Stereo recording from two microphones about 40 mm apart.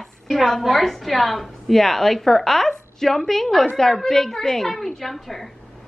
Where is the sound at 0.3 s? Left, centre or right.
Centre.